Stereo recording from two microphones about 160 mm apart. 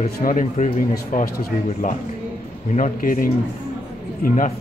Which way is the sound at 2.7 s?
55° left (ahead or behind).